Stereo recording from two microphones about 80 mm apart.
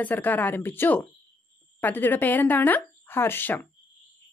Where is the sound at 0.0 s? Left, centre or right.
Left.